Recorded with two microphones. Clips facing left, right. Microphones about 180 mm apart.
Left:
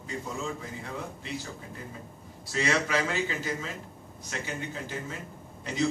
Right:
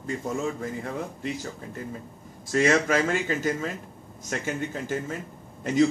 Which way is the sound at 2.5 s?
50° right (ahead or behind).